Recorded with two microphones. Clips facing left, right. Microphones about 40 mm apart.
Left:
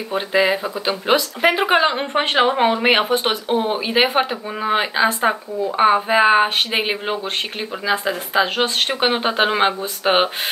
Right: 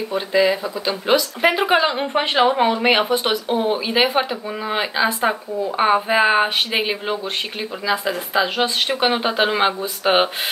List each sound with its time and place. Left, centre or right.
0.1 s speech: left